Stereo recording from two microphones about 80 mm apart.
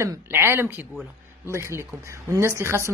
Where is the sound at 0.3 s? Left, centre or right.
Right.